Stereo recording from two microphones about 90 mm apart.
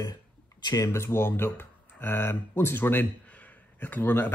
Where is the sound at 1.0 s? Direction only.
30° left (ahead or behind).